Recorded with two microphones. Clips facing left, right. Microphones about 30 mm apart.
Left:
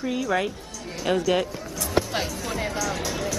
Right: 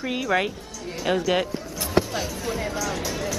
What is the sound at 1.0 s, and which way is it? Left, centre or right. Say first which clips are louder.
Speech: even; centre.